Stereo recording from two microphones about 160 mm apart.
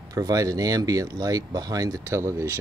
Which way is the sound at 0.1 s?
25° right (ahead or behind).